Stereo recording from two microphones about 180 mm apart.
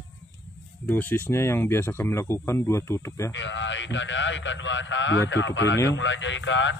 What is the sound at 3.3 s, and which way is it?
A man's voice, 90° left.